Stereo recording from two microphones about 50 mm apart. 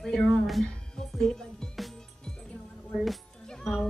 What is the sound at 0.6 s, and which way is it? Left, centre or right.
Music, centre.